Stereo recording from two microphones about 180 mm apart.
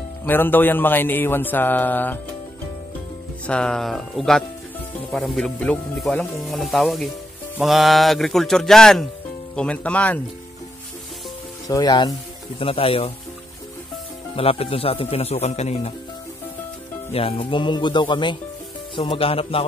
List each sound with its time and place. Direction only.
0.2 s music: 10° left (ahead or behind)
3.4 s speech: 5° left (ahead or behind)
9.6 s music: 5° left (ahead or behind)
11.6 s speech: 20° left (ahead or behind)
14.3 s speech: 30° left (ahead or behind)
17.1 s speech: 30° left (ahead or behind)